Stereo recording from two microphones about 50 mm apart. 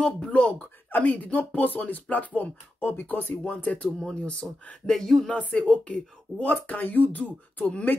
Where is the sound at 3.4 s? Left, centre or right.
Left.